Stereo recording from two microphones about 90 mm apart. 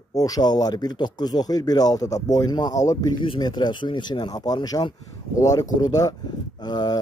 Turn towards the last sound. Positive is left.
turn(degrees=50)  # may be behind; listen again after turning